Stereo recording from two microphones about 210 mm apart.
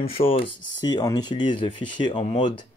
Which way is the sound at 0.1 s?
25° left (ahead or behind).